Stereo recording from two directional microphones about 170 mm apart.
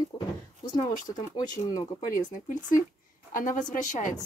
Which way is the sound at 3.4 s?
50° left (ahead or behind).